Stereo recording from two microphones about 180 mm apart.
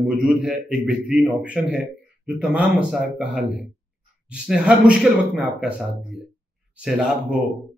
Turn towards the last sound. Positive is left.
turn(degrees=-5)  # may be behind; listen again after turning